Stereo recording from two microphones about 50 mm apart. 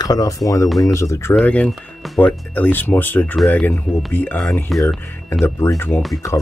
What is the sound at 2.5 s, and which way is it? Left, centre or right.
Speech, left.